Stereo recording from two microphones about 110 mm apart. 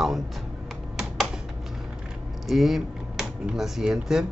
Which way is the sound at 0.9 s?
5° right (ahead or behind).